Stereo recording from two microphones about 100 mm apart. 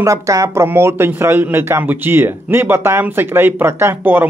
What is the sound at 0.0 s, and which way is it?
A man's voice, 30° right (ahead or behind).